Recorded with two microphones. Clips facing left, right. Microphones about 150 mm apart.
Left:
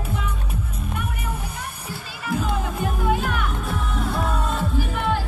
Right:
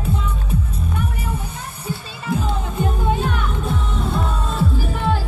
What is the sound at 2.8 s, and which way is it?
Music, 30° right (ahead or behind).